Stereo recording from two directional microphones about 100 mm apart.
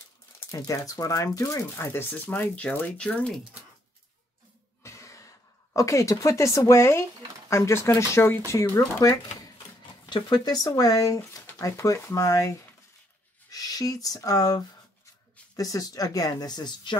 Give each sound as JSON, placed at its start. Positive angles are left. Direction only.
{"t": 0.4, "sound": "speech", "side_deg": 30}
{"t": 1.7, "sound": "speech", "side_deg": 25}
{"t": 4.8, "sound": "speech", "side_deg": 30}
{"t": 10.0, "sound": "speech", "side_deg": 50}